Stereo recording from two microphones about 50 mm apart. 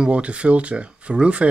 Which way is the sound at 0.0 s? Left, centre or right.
Right.